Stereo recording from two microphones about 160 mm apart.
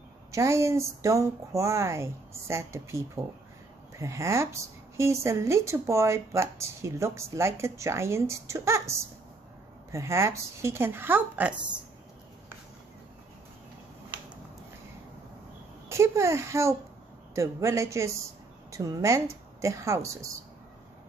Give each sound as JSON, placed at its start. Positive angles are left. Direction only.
{"t": 0.3, "sound": "speech", "side_deg": -20}
{"t": 15.9, "sound": "a woman's voice", "side_deg": -15}